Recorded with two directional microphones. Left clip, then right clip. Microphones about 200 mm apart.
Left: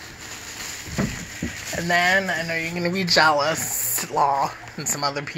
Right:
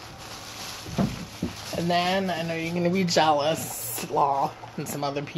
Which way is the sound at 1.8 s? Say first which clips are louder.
Left 5 dB; 15° right (ahead or behind).